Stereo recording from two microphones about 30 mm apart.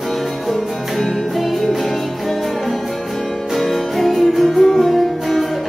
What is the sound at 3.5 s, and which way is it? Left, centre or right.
Music, centre.